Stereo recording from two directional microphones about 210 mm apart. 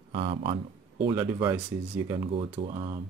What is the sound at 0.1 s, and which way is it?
Speech, 25° right (ahead or behind).